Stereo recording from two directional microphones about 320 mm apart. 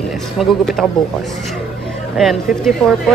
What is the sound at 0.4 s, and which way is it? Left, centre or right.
Speech, centre.